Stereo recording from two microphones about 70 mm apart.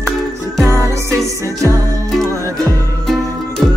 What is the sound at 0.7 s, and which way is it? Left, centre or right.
Music, right.